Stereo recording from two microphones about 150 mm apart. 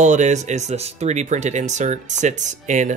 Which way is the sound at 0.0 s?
55° right (ahead or behind).